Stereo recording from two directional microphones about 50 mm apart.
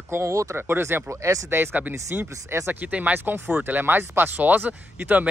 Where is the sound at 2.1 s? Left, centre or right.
Right.